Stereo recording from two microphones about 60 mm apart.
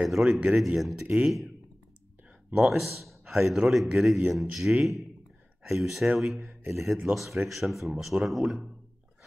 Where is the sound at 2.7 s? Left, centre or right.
Centre.